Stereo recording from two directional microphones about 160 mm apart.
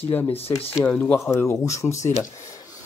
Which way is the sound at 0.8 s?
10° left (ahead or behind).